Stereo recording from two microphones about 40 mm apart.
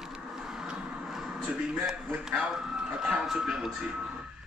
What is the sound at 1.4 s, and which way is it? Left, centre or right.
A man's voice, right.